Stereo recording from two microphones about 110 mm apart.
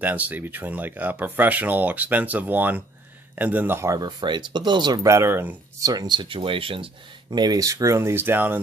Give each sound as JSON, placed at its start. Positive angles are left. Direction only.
{"t": 0.0, "sound": "speech", "side_deg": -15}
{"t": 4.0, "sound": "speech", "side_deg": -45}
{"t": 5.0, "sound": "speech", "side_deg": -25}
{"t": 5.8, "sound": "speech", "side_deg": -35}
{"t": 7.2, "sound": "speech", "side_deg": -40}